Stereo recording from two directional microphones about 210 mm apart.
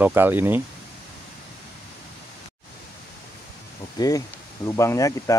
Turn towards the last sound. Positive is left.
turn(degrees=15)  # may be behind; listen again after turning